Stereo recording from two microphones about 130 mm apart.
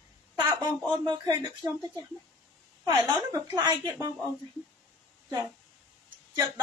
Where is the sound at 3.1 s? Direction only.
25° right (ahead or behind).